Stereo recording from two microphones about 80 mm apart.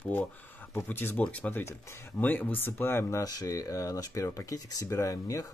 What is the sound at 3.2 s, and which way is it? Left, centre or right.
Speech, left.